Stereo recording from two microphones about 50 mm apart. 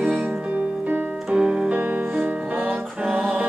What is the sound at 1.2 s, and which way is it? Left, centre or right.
Music, centre.